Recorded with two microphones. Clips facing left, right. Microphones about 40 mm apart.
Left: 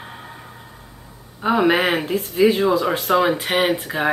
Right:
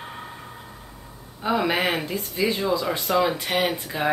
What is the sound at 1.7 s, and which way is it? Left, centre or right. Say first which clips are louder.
Speech: left 6 dB; left.